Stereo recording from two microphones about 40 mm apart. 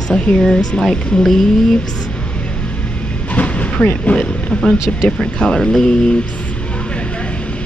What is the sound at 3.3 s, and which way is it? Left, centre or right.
Train, left.